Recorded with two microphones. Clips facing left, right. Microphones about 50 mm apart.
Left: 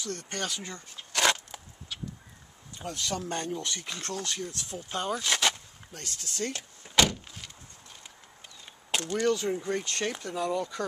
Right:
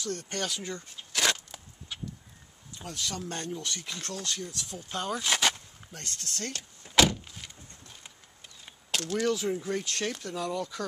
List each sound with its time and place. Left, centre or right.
0.0 s speech: centre
1.5 s wood: centre
3.0 s speech: centre
7.0 s door: centre
8.9 s speech: centre